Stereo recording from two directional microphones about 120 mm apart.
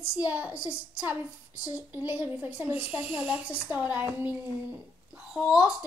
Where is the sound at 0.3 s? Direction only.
10° right (ahead or behind).